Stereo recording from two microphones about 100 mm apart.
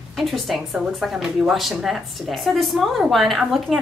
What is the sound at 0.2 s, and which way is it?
A woman's voice, centre (ahead or behind).